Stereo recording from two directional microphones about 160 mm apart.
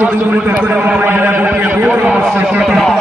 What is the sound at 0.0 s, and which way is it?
A man's voice, 10° right (ahead or behind).